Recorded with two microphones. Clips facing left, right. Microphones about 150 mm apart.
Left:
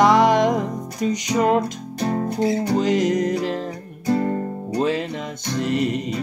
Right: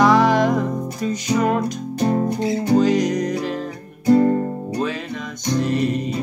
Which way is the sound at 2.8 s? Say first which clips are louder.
Right 1 dB; 25° left (ahead or behind).